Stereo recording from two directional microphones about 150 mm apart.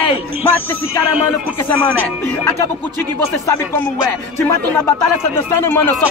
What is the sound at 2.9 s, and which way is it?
Speech, 15° left (ahead or behind).